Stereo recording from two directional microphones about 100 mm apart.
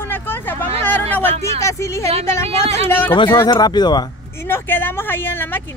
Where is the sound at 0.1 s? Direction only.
20° left (ahead or behind).